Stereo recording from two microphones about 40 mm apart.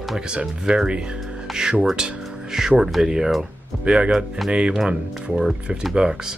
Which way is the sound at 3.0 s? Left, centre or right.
Centre.